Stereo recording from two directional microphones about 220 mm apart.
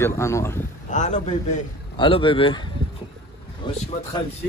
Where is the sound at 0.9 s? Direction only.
35° left (ahead or behind).